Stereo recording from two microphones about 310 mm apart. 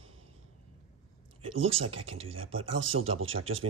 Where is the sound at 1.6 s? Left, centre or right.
Centre.